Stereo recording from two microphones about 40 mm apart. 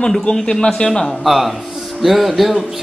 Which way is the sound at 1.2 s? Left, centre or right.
Centre.